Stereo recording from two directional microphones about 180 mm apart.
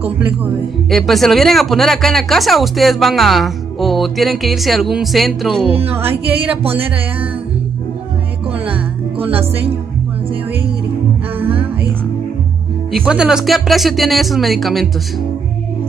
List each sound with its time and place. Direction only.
0.8 s speech: centre (ahead or behind)
6.2 s music: 30° right (ahead or behind)
9.3 s music: 35° right (ahead or behind)
12.9 s speech: 5° right (ahead or behind)